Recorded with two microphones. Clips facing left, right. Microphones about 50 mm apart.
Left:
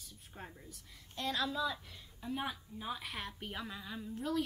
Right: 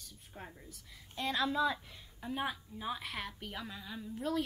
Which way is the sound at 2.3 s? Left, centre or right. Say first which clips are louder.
Right 3 dB; centre.